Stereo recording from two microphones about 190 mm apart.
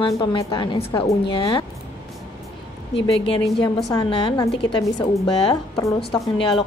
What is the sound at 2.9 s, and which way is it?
A woman's voice, 30° left (ahead or behind).